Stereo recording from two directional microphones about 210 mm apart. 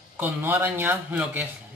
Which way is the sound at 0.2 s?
10° right (ahead or behind).